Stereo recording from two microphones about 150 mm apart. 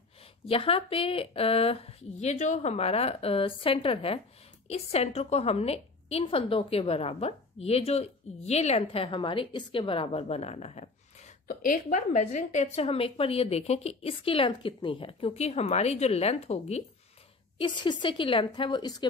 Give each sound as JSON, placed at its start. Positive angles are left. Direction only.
{"t": 0.5, "sound": "a woman's voice", "side_deg": 40}
{"t": 11.4, "sound": "a woman's voice", "side_deg": 60}
{"t": 17.6, "sound": "a woman's voice", "side_deg": 30}